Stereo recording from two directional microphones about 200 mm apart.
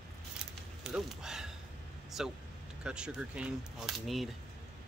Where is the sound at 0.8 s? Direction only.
5° right (ahead or behind).